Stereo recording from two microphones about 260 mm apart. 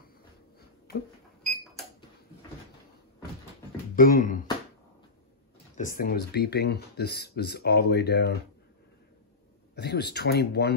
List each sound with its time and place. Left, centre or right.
1.4 s a sound: centre
3.9 s speech: left
5.8 s speech: left
9.8 s speech: left